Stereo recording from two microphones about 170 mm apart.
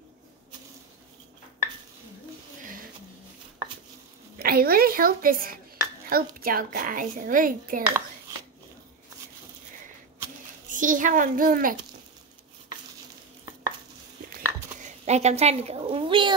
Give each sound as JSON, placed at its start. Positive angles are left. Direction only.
{"t": 4.4, "sound": "a woman's voice", "side_deg": -60}
{"t": 10.7, "sound": "a woman's voice", "side_deg": -50}
{"t": 14.3, "sound": "a sound", "side_deg": -45}